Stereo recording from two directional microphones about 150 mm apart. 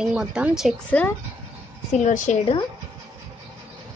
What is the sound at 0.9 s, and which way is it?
Speech, 10° left (ahead or behind).